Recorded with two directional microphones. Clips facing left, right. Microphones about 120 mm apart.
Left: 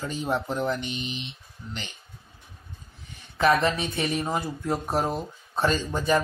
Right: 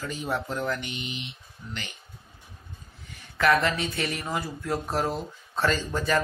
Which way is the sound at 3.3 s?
25° left (ahead or behind).